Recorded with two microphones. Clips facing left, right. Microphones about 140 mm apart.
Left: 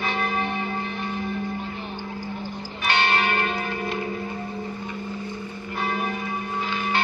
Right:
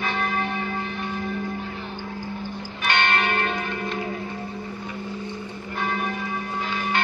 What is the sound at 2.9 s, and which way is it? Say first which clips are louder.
Church bell: even; 5° left (ahead or behind).